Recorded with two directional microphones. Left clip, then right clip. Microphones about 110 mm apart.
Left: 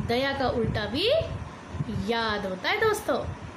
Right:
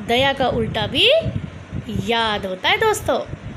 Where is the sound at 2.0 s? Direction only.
55° right (ahead or behind).